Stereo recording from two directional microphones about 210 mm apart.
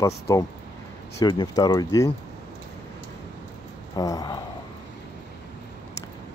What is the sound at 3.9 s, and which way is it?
Speech, 15° left (ahead or behind).